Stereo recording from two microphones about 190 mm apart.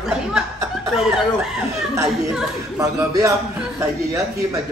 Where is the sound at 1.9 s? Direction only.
15° right (ahead or behind).